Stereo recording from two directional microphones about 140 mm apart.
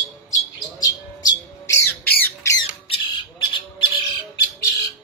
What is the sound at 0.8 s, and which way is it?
Squawk, 25° left (ahead or behind).